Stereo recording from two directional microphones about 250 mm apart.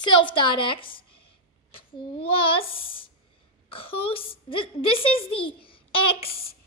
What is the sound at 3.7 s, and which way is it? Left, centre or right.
A woman's voice, left.